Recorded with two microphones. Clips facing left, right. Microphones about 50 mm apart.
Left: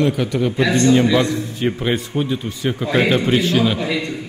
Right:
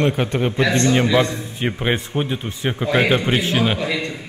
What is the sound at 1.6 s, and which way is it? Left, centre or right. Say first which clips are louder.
Speech: left 1 dB; right.